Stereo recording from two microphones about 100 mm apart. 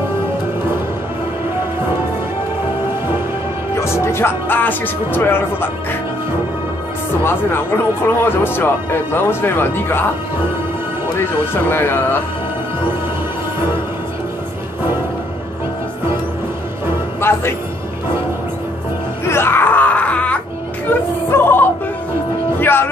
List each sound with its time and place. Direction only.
3.7 s speech: 25° left (ahead or behind)
7.2 s speech: 25° left (ahead or behind)
11.1 s speech: 25° left (ahead or behind)
17.2 s a man's voice: 25° left (ahead or behind)
19.2 s wail: 25° left (ahead or behind)
21.3 s music: 20° left (ahead or behind)